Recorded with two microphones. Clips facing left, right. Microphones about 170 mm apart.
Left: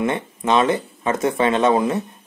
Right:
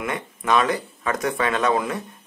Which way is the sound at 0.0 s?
25° left (ahead or behind).